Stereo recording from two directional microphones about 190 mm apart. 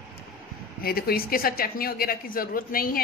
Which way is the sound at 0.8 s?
50° left (ahead or behind).